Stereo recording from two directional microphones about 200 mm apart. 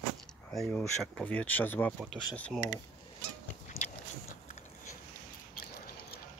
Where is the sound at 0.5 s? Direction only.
Centre (ahead or behind).